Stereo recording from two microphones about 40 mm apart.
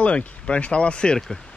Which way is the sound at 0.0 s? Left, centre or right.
Left.